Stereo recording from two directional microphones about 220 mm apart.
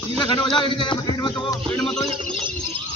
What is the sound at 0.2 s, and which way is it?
Speech, 20° left (ahead or behind).